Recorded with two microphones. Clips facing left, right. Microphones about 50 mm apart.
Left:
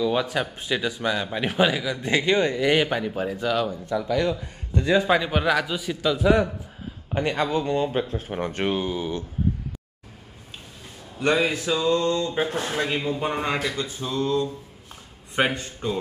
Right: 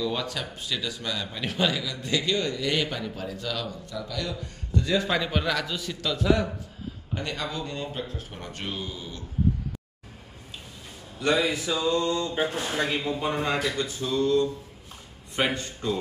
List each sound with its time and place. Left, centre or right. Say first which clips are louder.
0.0 s speech: left 6 dB; left
5.0 s a man's voice: left 5 dB; centre
7.2 s speech: left 9 dB; left
11.1 s a man's voice: left 2 dB; left
11.4 s a sound: left 3 dB; left
12.8 s a man's voice: left 2 dB; left